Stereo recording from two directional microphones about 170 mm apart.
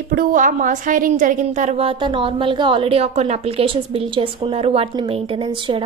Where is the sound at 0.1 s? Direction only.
55° right (ahead or behind).